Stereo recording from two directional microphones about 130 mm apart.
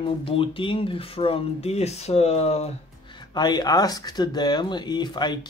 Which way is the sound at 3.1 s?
35° left (ahead or behind).